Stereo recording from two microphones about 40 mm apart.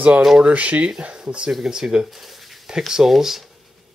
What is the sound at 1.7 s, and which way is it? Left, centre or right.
Speech, centre.